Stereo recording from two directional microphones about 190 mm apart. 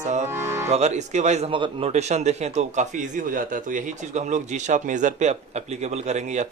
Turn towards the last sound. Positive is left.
turn(degrees=-40)  # may be behind; listen again after turning